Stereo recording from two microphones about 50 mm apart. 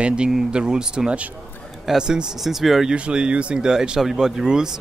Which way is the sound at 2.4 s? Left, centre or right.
Centre.